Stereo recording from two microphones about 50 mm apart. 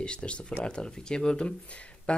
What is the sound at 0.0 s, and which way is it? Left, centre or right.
Speech, left.